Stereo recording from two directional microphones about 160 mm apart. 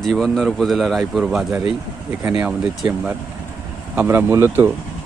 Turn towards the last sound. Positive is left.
turn(degrees=-10)  # may be behind; listen again after turning